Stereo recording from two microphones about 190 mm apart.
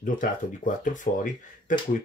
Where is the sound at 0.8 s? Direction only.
45° left (ahead or behind).